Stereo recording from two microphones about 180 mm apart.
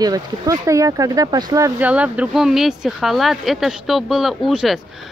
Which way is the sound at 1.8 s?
5° right (ahead or behind).